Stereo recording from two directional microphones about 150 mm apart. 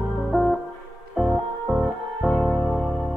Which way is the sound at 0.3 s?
Centre (ahead or behind).